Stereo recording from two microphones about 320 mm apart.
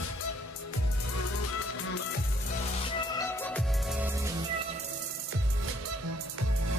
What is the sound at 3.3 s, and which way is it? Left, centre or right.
Music, centre.